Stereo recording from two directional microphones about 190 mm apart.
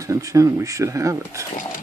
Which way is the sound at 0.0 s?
15° right (ahead or behind).